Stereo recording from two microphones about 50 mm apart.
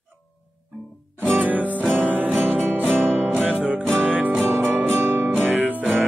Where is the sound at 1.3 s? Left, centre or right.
Right.